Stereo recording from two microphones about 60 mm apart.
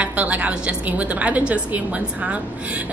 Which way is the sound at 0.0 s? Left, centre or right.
Right.